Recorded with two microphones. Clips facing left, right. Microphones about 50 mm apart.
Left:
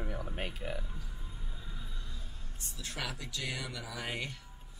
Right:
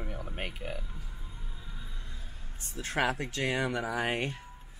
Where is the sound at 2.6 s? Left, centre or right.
Right.